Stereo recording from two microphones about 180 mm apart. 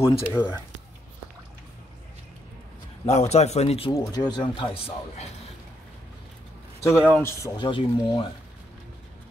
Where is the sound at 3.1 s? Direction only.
40° left (ahead or behind).